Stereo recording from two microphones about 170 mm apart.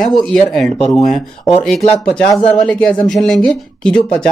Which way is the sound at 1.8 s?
35° left (ahead or behind).